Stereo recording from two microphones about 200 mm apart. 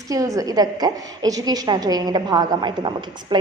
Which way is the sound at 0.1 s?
15° right (ahead or behind).